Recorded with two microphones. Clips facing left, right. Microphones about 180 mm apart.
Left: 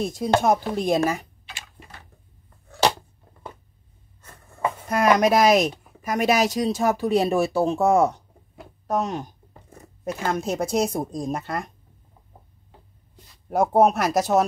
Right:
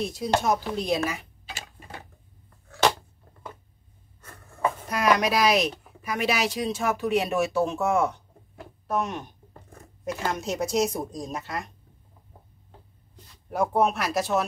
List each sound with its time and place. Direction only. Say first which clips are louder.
0.0 s speech: left 4 dB; 50° left (ahead or behind)
4.8 s speech: left 5 dB; 50° left (ahead or behind)
10.3 s a woman's voice: left 3 dB; 55° left (ahead or behind)
13.5 s speech: left 5 dB; 45° left (ahead or behind)